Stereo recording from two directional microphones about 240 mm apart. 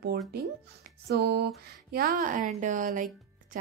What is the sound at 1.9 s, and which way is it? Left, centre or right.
Speech, right.